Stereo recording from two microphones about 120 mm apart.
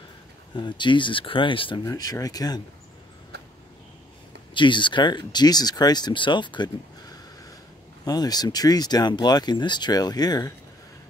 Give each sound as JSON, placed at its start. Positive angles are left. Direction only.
{"t": 0.6, "sound": "speech", "side_deg": 40}
{"t": 1.9, "sound": "speech", "side_deg": 30}
{"t": 4.6, "sound": "speech", "side_deg": 40}